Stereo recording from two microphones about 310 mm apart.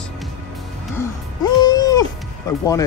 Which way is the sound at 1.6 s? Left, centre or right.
Centre.